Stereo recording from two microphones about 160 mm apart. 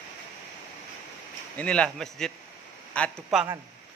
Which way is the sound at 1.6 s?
5° left (ahead or behind).